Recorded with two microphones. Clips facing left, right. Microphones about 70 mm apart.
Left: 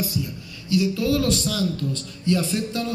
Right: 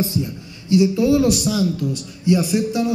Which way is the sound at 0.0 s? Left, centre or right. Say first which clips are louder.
Right 5 dB; right.